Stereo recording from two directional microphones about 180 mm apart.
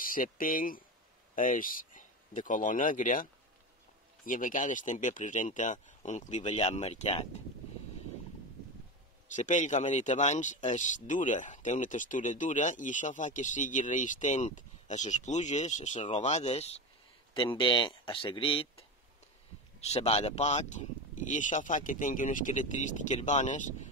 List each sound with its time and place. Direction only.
0.0 s speech: 50° left (ahead or behind)
4.3 s speech: 45° left (ahead or behind)
9.3 s speech: 45° left (ahead or behind)